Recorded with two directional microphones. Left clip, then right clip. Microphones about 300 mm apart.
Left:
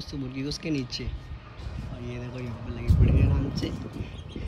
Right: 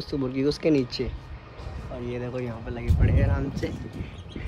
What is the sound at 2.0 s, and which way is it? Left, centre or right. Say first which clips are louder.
Speech: right 7 dB; centre.